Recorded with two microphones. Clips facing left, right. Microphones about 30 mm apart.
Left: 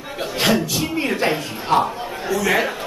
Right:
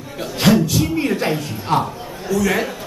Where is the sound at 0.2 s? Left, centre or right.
Centre.